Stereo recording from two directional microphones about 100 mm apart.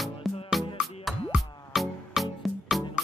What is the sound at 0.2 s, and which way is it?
Music, centre (ahead or behind).